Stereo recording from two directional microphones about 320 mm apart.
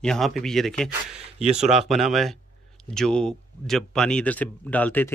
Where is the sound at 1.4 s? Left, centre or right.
Right.